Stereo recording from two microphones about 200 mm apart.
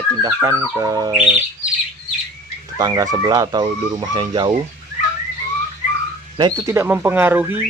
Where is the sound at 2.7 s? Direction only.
20° right (ahead or behind).